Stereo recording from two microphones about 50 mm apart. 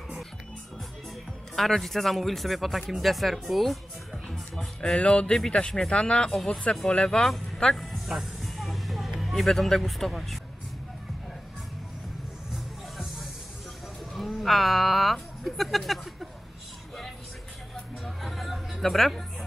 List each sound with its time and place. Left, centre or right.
1.5 s speech: centre
4.9 s speech: centre
7.2 s music: centre
9.2 s speech: centre
12.5 s music: centre
14.1 s a sound: centre
18.2 s a sound: centre